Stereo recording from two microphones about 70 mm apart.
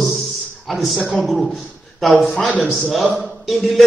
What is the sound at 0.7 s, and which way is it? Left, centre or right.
A man's voice, centre.